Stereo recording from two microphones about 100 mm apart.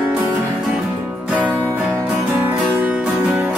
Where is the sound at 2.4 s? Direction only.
20° right (ahead or behind).